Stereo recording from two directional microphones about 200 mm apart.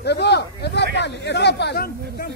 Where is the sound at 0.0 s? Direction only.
55° left (ahead or behind).